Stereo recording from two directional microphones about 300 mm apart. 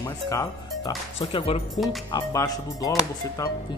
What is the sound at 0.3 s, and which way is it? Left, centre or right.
Speech, centre.